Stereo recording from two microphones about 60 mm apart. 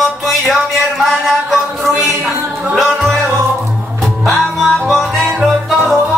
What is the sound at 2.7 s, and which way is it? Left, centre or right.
Music, centre.